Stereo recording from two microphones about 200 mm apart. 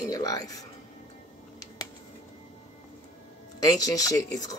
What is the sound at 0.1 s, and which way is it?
Speech, 20° left (ahead or behind).